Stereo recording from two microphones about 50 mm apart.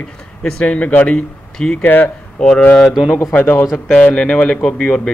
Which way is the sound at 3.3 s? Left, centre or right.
Left.